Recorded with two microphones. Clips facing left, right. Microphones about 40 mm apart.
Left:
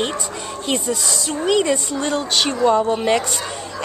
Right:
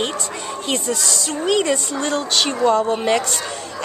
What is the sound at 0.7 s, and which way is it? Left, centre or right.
Speech, centre.